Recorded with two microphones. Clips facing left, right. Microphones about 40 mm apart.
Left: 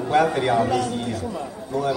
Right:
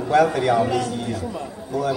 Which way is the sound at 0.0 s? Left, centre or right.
Centre.